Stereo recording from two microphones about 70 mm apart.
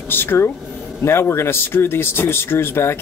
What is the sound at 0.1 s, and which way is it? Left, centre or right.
Speech, left.